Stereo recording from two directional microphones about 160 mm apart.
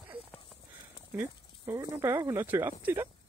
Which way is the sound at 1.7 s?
15° right (ahead or behind).